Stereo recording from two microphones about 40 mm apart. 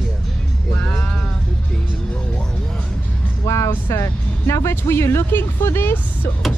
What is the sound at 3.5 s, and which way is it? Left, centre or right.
Speech, left.